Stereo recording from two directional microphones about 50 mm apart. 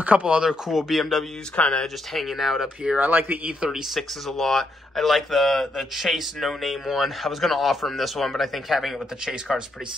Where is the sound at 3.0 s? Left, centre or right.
Right.